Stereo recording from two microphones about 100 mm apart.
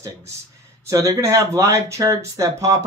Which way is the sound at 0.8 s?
30° right (ahead or behind).